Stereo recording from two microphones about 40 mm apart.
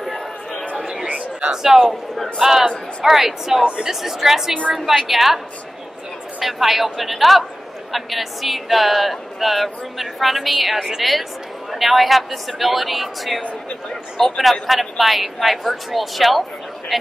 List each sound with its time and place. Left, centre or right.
0.0 s chatter: centre
1.0 s a sound: right
1.5 s a woman's voice: centre
3.6 s speech: right
3.9 s a woman's voice: centre
6.4 s speech: centre